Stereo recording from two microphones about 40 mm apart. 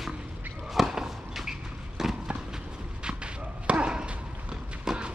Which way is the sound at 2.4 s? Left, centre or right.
Centre.